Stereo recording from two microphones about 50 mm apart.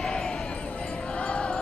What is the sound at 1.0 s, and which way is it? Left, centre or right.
Music, left.